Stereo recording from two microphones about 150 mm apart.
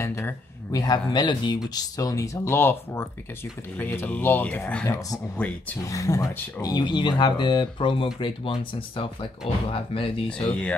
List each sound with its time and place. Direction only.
0.0 s speech: 20° left (ahead or behind); by 10.2 s 35° left (ahead or behind)
10.4 s speech: 10° left (ahead or behind)